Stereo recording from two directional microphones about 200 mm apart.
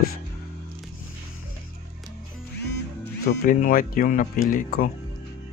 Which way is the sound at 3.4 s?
45° left (ahead or behind).